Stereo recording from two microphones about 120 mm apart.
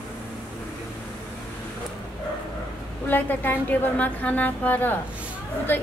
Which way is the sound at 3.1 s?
15° left (ahead or behind).